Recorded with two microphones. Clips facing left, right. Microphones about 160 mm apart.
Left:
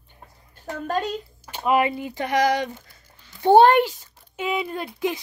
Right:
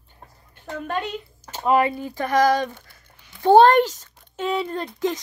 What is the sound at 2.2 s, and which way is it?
Speech, 45° right (ahead or behind).